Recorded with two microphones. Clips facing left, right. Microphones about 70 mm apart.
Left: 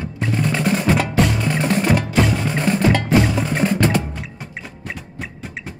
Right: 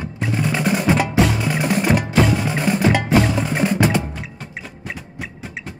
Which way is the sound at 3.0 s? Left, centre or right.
Centre.